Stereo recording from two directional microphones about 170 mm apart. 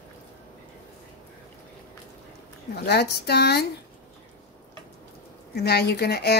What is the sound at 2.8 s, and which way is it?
Speech, 75° left (ahead or behind).